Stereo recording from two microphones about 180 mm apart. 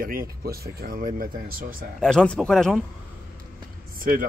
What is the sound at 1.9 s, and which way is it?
Speech, 5° left (ahead or behind).